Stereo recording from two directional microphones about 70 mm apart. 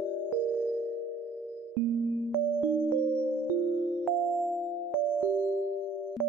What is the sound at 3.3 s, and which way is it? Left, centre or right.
Music, right.